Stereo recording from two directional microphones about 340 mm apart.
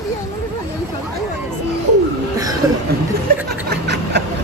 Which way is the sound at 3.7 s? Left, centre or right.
Right.